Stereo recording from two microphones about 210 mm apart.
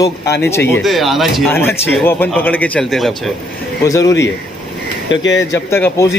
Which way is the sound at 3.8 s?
15° left (ahead or behind).